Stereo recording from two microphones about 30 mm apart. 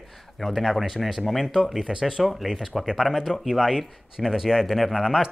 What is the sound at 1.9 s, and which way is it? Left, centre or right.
Speech, centre.